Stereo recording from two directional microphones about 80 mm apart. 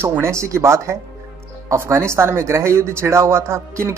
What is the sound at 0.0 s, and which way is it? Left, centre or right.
Speech, right.